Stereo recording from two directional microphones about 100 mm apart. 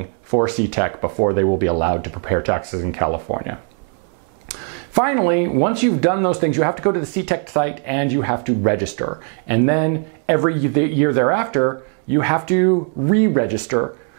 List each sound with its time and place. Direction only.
0.3 s speech: 10° right (ahead or behind)
4.9 s speech: 15° right (ahead or behind)